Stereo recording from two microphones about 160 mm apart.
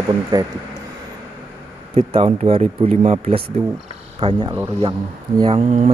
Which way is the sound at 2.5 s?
40° right (ahead or behind).